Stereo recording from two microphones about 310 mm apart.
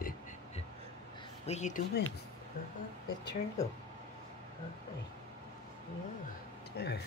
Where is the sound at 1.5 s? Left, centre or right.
Left.